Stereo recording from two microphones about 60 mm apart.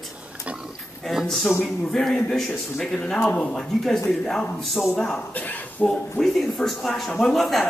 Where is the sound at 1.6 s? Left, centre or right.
Centre.